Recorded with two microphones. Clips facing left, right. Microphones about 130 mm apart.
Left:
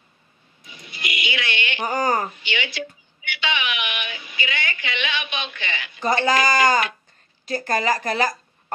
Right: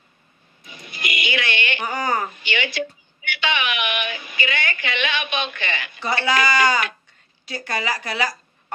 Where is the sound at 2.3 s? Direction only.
50° right (ahead or behind).